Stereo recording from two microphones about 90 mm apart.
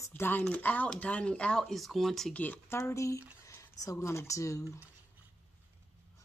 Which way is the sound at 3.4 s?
30° left (ahead or behind).